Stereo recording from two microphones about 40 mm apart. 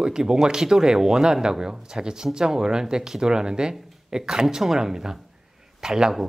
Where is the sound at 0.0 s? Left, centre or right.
Centre.